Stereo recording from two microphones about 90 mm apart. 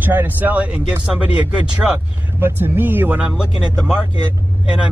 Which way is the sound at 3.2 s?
10° right (ahead or behind).